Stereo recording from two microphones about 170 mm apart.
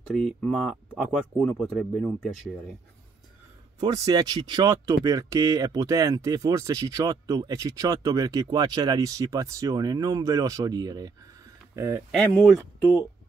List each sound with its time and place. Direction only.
0.1 s speech: 5° left (ahead or behind)
3.8 s speech: 20° right (ahead or behind)
12.1 s speech: 5° left (ahead or behind)